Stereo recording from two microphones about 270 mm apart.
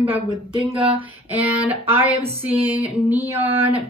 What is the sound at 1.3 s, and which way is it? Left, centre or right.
Speech, centre.